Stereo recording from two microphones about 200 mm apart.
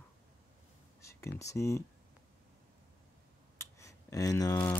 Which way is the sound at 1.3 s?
15° left (ahead or behind).